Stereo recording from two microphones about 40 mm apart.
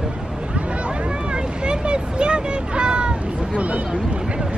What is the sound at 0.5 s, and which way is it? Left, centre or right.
Speech, right.